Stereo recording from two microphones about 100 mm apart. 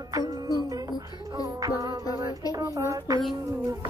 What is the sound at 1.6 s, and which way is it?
Speech, 35° right (ahead or behind).